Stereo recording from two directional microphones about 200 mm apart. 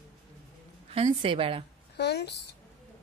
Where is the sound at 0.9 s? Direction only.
30° right (ahead or behind).